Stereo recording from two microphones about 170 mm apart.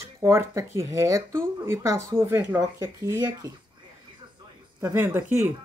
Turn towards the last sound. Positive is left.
turn(degrees=-15)  # may be behind; listen again after turning